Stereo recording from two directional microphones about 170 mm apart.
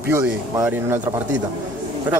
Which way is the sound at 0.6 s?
15° right (ahead or behind).